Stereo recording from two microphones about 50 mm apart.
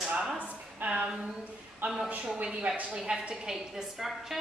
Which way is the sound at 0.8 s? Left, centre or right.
Right.